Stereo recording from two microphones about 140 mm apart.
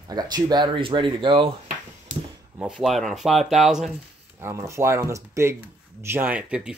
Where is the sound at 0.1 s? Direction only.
30° right (ahead or behind).